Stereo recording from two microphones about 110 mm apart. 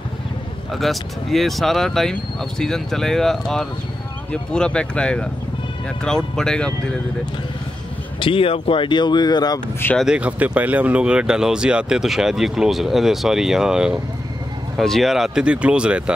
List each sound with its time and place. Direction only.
0.7 s speech: centre (ahead or behind)
8.2 s speech: 55° left (ahead or behind)
9.9 s speech: 10° right (ahead or behind)